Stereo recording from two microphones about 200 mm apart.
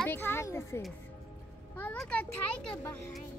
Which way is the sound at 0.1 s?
10° left (ahead or behind).